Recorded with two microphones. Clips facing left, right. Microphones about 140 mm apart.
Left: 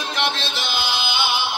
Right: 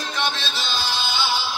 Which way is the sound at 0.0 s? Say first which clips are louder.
Left 2 dB; 55° left (ahead or behind).